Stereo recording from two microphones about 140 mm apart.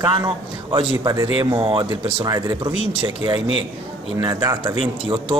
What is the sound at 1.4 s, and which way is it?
Speech, 40° right (ahead or behind).